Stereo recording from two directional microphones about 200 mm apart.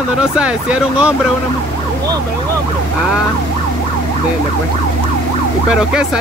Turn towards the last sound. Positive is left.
turn(degrees=-5)  # may be behind; listen again after turning